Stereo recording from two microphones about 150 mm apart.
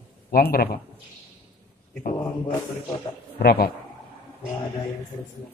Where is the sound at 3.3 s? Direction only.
90° left.